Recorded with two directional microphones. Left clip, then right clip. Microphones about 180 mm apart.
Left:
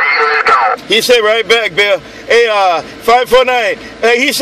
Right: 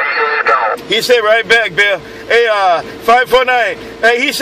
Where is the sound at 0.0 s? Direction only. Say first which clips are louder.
Left 3 dB; 45° left (ahead or behind).